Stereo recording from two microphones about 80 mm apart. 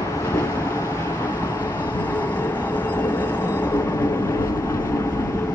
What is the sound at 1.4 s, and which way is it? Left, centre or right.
Vehicle, left.